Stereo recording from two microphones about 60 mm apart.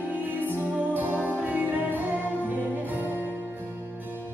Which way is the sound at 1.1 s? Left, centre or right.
Left.